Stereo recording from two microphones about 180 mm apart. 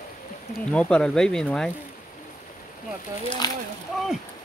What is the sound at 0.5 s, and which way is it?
Speech, 5° left (ahead or behind).